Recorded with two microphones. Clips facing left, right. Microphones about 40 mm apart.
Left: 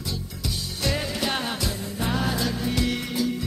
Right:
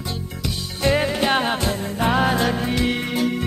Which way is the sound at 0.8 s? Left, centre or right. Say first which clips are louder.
Right 8 dB; right.